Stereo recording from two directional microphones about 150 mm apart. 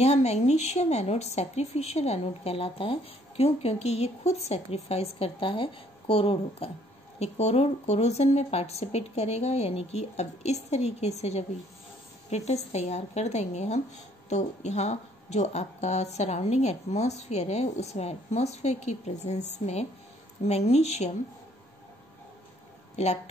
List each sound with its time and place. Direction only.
0.0 s speech: 45° left (ahead or behind)